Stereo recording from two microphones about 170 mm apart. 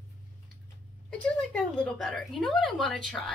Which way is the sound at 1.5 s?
5° left (ahead or behind).